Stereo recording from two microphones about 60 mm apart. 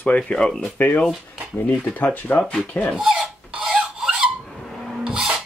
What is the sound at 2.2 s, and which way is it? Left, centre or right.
Speech, left.